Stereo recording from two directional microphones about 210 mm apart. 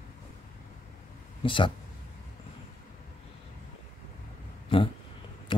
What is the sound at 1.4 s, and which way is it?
Speech, 25° left (ahead or behind).